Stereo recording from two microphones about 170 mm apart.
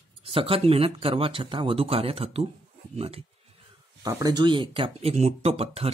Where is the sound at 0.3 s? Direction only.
35° right (ahead or behind).